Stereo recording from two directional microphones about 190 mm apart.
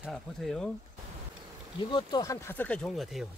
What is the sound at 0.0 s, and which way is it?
Speech, centre (ahead or behind).